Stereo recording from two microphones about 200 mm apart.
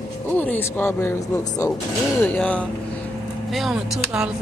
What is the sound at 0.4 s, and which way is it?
A man's voice, 10° left (ahead or behind).